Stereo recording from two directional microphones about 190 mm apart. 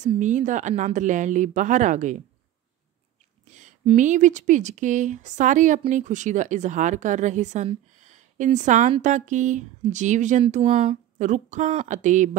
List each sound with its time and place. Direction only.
0.0 s speech: 40° right (ahead or behind)
3.4 s speech: 40° right (ahead or behind)